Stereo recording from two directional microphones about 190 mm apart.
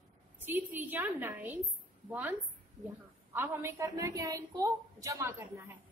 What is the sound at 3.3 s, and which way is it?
A woman's voice, 15° right (ahead or behind).